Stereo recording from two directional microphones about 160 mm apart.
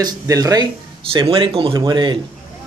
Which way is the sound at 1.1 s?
35° right (ahead or behind).